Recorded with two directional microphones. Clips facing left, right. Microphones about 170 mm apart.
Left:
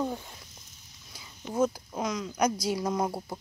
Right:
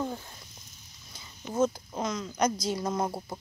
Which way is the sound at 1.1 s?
Centre (ahead or behind).